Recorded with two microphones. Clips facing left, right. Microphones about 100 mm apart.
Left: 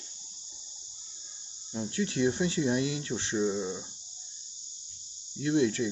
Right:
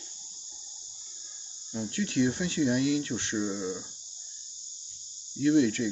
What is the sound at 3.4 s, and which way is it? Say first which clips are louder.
Speech: left 4 dB; 10° left (ahead or behind).